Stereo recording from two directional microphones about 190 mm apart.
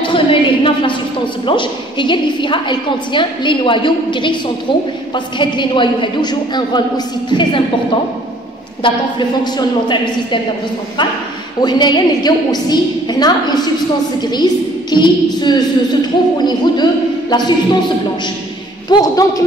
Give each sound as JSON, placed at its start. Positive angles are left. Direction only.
{"t": 0.0, "sound": "a woman's voice", "side_deg": 25}
{"t": 11.6, "sound": "a woman's voice", "side_deg": 25}